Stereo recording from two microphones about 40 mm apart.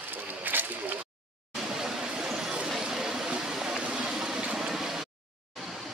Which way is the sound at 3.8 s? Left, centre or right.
Right.